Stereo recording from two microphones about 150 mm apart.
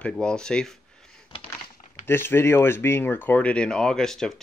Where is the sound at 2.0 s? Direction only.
15° left (ahead or behind).